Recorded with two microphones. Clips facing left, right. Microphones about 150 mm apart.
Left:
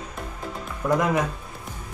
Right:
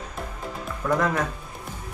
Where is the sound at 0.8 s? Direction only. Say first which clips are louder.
Left 2 dB; 15° left (ahead or behind).